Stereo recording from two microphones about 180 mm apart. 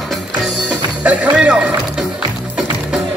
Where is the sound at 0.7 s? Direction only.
5° right (ahead or behind).